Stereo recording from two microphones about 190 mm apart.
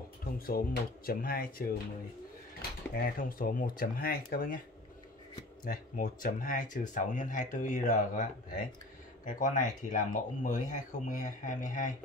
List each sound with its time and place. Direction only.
0.5 s speech: 50° left (ahead or behind)
3.0 s speech: 50° left (ahead or behind)
5.6 s speech: 45° left (ahead or behind)